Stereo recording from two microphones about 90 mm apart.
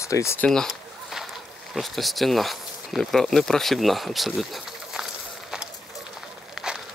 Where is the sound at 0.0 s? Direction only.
35° left (ahead or behind).